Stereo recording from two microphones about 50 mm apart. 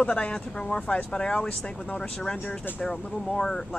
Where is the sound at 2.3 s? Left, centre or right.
Left.